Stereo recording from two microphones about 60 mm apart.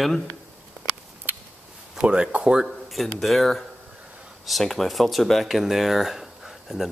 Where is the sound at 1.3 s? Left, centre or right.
Right.